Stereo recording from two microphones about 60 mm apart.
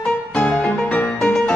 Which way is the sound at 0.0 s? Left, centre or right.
Centre.